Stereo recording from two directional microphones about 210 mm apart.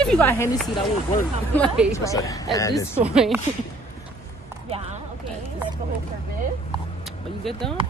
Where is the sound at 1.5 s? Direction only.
Centre (ahead or behind).